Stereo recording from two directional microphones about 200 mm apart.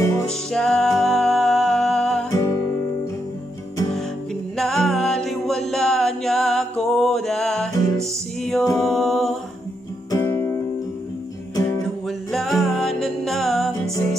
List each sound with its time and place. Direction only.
0.3 s music: centre (ahead or behind)
2.3 s music: 15° left (ahead or behind)
4.6 s music: centre (ahead or behind)
10.1 s music: 15° left (ahead or behind)
12.3 s music: centre (ahead or behind)